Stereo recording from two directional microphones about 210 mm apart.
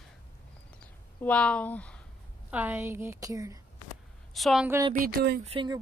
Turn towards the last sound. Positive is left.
turn(degrees=-25)  # may be behind; listen again after turning